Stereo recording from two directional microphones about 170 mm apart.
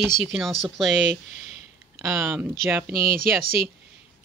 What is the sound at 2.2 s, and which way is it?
Speech, 10° right (ahead or behind).